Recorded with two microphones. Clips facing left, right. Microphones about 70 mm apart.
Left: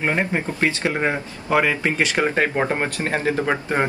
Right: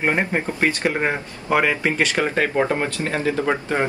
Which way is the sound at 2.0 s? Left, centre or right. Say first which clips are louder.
Even; centre.